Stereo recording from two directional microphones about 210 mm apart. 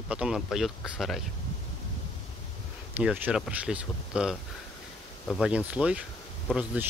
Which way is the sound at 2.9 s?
10° right (ahead or behind).